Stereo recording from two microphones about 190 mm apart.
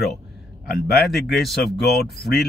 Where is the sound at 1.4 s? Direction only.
Centre (ahead or behind).